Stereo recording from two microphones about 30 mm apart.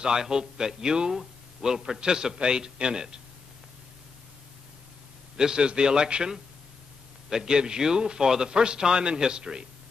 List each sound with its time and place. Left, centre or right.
0.0 s speech: right
5.4 s speech: right